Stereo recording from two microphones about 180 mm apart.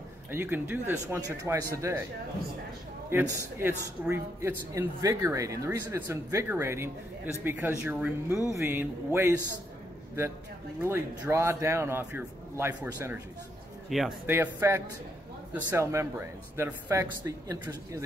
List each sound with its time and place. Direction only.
0.3 s speech: 10° right (ahead or behind)
3.1 s speech: 15° right (ahead or behind)
10.8 s speech: 15° right (ahead or behind)